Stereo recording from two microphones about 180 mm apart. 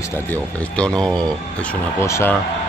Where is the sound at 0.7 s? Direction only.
5° left (ahead or behind).